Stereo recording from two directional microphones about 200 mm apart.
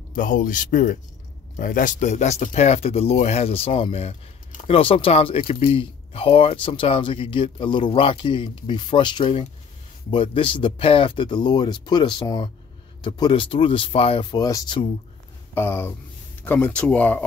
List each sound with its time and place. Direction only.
0.1 s speech: 40° left (ahead or behind); by 17.2 s 5° left (ahead or behind)